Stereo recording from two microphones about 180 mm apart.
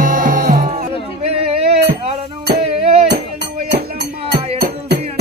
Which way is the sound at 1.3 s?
35° right (ahead or behind).